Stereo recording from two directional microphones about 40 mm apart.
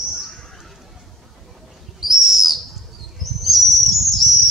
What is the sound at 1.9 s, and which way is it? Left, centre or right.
Bird, centre.